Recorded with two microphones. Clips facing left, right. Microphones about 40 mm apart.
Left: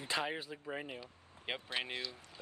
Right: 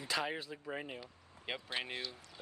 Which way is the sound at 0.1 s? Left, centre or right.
Left.